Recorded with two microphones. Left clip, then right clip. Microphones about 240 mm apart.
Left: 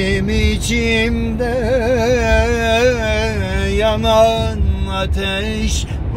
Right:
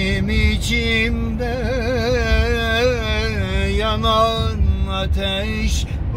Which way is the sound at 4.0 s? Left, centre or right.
Centre.